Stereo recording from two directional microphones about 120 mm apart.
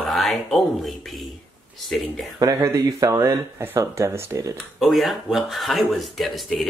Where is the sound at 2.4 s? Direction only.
30° right (ahead or behind).